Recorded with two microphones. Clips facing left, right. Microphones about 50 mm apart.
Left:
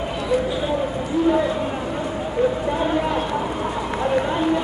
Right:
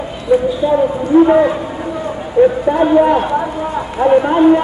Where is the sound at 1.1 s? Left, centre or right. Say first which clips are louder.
Right 12 dB; right.